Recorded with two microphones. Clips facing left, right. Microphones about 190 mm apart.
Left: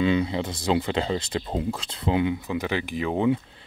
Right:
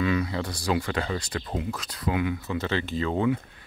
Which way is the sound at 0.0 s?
25° left (ahead or behind).